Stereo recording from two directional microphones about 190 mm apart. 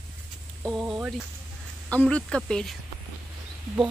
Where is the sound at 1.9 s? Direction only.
5° left (ahead or behind).